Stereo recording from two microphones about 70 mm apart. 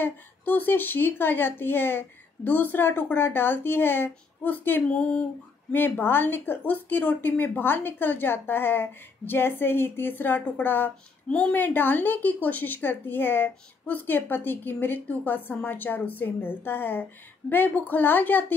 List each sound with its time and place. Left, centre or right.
0.0 s speech: left
11.2 s a woman's voice: centre
11.5 s a woman's voice: left